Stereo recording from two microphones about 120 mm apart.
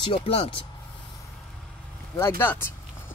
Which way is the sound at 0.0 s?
50° left (ahead or behind).